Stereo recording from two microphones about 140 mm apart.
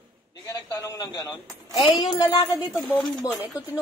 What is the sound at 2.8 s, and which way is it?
Speech, centre (ahead or behind).